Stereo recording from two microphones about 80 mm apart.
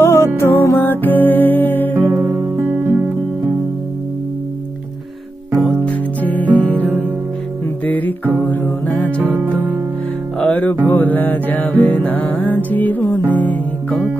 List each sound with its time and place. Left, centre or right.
0.0 s music: left
2.0 s music: right
5.7 s music: centre
6.8 s music: right
7.8 s music: left
9.2 s music: right
10.4 s music: centre